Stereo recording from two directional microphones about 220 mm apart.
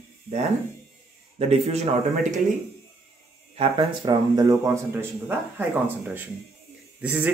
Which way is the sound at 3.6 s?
25° right (ahead or behind).